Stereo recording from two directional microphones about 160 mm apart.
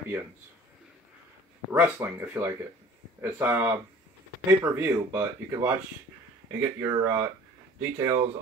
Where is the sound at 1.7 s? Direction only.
15° right (ahead or behind).